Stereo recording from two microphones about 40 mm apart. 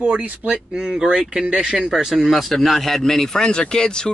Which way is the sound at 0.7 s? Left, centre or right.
Centre.